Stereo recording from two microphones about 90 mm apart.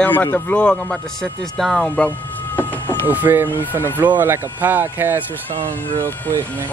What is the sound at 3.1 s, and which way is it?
Speech, 20° right (ahead or behind).